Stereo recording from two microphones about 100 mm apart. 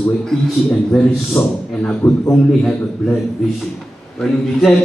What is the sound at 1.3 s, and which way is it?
A man's voice, 15° left (ahead or behind).